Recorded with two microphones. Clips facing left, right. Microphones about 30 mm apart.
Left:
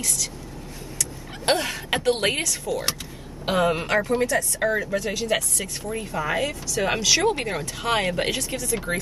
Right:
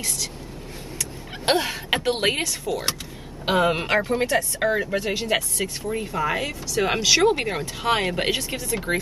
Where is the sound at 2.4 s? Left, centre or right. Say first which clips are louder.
Even; centre.